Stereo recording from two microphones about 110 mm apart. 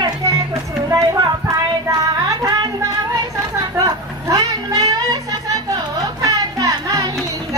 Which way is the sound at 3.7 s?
35° right (ahead or behind).